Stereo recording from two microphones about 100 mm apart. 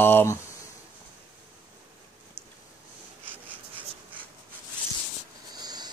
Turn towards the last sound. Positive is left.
turn(degrees=-45)  # may be behind; listen again after turning